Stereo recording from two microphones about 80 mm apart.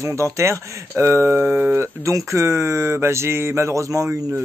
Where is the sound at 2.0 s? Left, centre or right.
Right.